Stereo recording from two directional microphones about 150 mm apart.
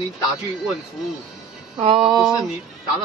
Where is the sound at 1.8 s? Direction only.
40° right (ahead or behind).